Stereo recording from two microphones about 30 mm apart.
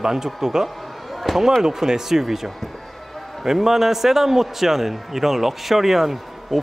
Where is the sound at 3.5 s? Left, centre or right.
Centre.